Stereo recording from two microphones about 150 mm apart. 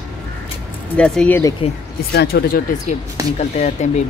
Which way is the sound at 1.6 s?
40° left (ahead or behind).